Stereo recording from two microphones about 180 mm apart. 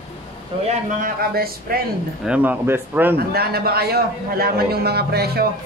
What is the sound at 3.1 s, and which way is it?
A man's voice, 60° right (ahead or behind).